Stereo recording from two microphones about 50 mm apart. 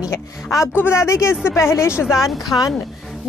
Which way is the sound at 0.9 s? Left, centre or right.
Left.